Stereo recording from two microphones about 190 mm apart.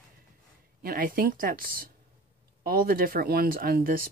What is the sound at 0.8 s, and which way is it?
Speech, 50° right (ahead or behind).